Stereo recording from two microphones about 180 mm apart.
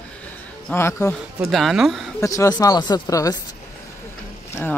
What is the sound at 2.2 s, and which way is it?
Speech, 20° left (ahead or behind).